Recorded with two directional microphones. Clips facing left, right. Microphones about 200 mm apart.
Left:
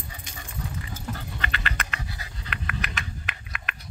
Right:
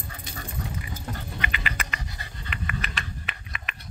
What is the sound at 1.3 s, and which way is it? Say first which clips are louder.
Pant: even; 10° right (ahead or behind).